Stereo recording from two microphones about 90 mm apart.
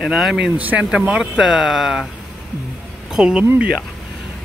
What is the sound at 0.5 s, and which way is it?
Speech, 15° right (ahead or behind).